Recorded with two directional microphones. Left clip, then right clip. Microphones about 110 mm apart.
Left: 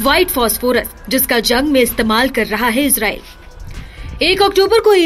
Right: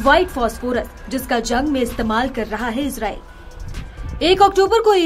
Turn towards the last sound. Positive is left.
turn(degrees=30)  # may be behind; listen again after turning